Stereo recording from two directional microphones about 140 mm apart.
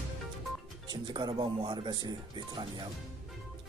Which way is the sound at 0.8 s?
30° right (ahead or behind).